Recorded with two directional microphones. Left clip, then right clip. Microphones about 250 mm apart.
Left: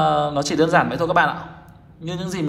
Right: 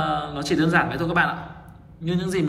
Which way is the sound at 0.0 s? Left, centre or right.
Centre.